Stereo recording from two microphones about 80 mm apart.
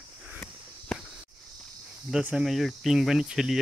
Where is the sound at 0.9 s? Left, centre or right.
Centre.